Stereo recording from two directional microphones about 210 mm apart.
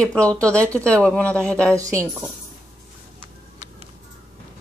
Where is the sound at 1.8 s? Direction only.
15° right (ahead or behind).